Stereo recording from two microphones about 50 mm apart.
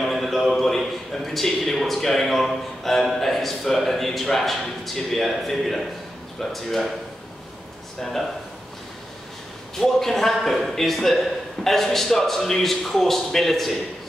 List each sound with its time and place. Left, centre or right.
0.0 s a man's voice: centre
8.0 s a man's voice: centre
9.8 s a man's voice: centre